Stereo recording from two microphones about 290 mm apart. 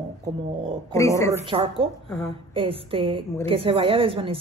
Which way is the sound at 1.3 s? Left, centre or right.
Centre.